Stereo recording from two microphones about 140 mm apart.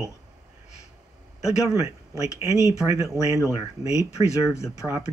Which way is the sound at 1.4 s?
25° right (ahead or behind).